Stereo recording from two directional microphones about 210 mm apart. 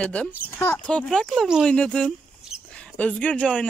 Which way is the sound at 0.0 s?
5° left (ahead or behind).